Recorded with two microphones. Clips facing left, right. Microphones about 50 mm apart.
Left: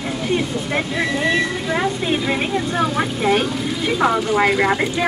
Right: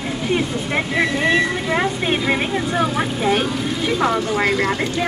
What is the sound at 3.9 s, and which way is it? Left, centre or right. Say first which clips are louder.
Speech: left 3 dB; centre.